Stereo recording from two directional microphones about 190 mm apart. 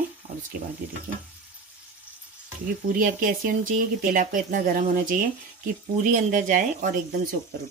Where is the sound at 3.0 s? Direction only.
45° right (ahead or behind).